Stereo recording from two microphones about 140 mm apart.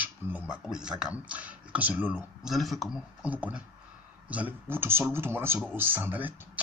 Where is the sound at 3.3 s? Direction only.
10° right (ahead or behind).